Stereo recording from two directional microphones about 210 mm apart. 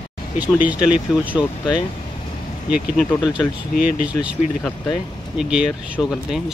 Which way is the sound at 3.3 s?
5° right (ahead or behind).